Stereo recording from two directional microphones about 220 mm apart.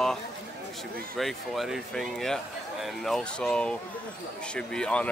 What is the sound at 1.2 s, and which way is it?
A man's voice, centre (ahead or behind).